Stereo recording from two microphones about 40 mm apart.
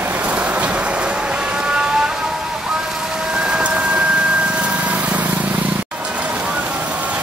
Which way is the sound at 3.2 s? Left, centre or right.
Right.